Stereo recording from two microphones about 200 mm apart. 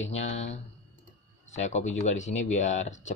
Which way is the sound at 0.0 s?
75° left (ahead or behind).